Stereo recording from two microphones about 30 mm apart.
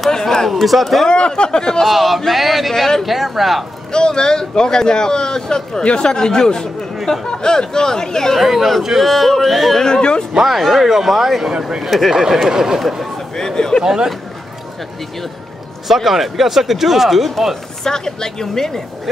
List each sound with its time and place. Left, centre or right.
0.1 s a sound: centre
0.5 s speech: centre
1.0 s speech: left
1.9 s speech: centre
3.9 s speech: left
8.4 s speech: centre
9.8 s speech: left
10.5 s speech: centre
12.1 s speech: centre
13.4 s speech: left
13.8 s speech: centre
15.9 s speech: centre
17.8 s a woman's voice: centre